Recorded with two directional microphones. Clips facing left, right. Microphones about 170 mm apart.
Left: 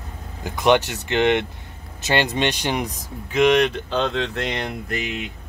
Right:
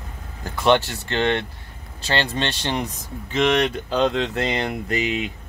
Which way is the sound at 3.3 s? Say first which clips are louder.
Left 3 dB; centre (ahead or behind).